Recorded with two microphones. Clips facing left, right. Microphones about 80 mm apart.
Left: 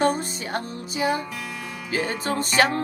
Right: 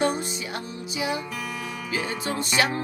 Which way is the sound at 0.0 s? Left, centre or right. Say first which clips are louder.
Left 3 dB; left.